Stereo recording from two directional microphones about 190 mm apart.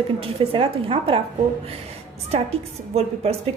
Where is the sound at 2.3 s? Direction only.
30° right (ahead or behind).